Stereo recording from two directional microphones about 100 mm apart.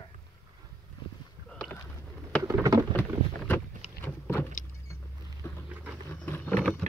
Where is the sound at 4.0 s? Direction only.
20° left (ahead or behind).